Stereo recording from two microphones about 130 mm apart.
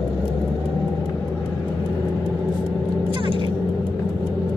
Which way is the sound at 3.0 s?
40° right (ahead or behind).